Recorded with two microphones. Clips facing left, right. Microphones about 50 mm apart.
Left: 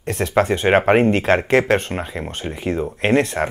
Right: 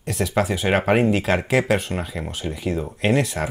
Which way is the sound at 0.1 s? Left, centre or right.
Left.